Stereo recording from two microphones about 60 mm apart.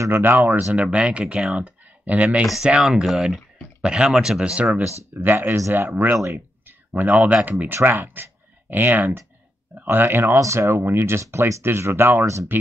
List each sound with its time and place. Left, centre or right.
0.1 s speech: right
0.8 s speech: centre
1.6 s a sound: right
2.8 s speech: centre
4.7 s speech: right
6.9 s speech: right
10.3 s speech: right